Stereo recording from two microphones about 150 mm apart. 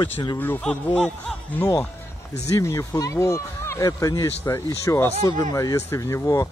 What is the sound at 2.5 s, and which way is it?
Speech, 20° left (ahead or behind).